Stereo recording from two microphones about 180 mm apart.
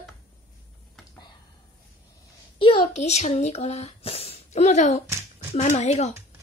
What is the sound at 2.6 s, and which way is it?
Speech, 30° left (ahead or behind).